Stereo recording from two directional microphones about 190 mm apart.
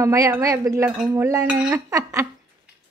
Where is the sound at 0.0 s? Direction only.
15° right (ahead or behind).